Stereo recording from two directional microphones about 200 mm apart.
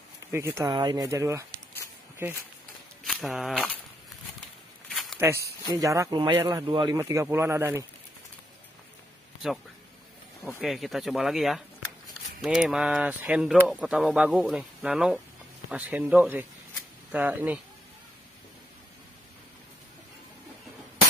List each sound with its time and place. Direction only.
0.3 s speech: 15° right (ahead or behind)
3.1 s speech: centre (ahead or behind)
4.9 s a sound: centre (ahead or behind)
5.2 s speech: 15° right (ahead or behind)
10.6 s speech: centre (ahead or behind)